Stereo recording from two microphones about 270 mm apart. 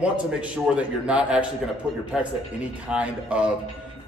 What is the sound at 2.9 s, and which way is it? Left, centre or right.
Speech, centre.